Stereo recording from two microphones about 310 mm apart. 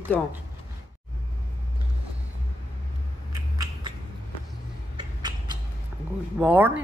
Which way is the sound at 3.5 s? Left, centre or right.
Centre.